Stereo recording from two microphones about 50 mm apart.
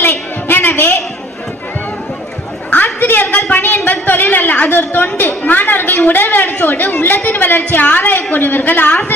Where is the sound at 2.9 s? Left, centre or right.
Left.